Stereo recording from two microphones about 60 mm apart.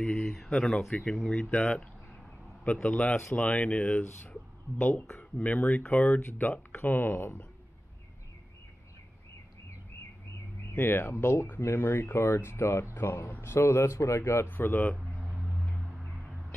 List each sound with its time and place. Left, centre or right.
0.0 s speech: centre
1.5 s speech: centre
4.3 s a sound: left
5.7 s speech: left
10.7 s speech: left
15.1 s a sound: centre